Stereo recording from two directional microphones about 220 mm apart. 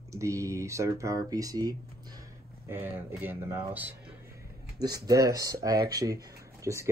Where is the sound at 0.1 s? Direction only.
15° right (ahead or behind).